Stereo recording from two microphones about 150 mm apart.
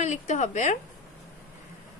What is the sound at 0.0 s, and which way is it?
Speech, 55° left (ahead or behind).